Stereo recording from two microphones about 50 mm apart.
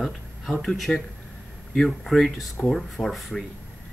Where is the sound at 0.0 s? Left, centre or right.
Centre.